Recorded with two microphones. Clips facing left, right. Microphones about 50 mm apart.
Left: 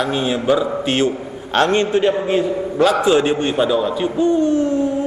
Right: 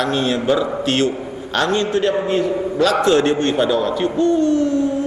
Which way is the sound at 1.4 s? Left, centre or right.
Left.